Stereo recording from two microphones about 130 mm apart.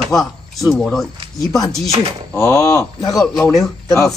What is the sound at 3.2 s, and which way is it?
Speech, centre (ahead or behind).